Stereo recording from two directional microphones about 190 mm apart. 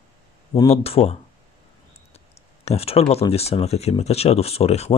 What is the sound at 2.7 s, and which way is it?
Speech, 30° left (ahead or behind).